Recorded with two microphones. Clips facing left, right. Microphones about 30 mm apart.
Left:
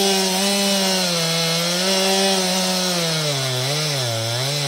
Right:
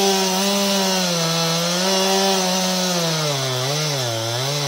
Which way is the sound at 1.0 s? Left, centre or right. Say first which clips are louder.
Even; left.